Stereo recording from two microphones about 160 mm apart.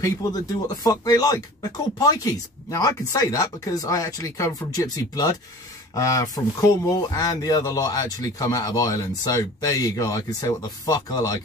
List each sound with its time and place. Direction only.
0.0 s speech: 20° left (ahead or behind)